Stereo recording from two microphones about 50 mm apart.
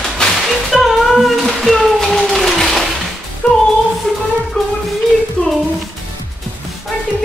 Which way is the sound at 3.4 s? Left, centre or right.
Left.